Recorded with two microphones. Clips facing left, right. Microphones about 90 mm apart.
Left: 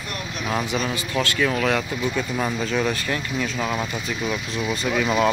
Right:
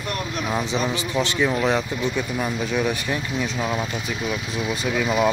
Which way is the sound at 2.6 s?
10° right (ahead or behind).